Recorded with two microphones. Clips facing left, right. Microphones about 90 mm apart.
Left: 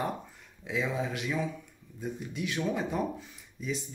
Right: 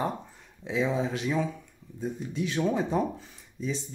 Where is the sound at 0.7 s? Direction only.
30° right (ahead or behind).